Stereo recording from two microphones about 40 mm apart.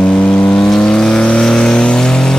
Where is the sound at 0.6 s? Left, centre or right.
Centre.